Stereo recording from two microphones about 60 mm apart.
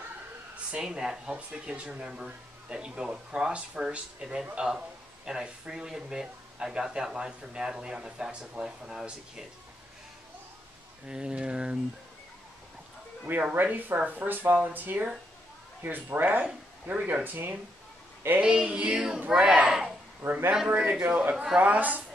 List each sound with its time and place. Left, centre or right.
0.7 s speech: centre
11.1 s speech: centre
13.3 s speech: right
18.4 s speech: centre
20.2 s speech: right
20.6 s speech: right